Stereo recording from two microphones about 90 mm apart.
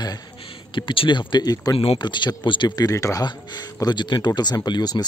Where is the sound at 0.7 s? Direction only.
65° left (ahead or behind); by 1.8 s 45° left (ahead or behind).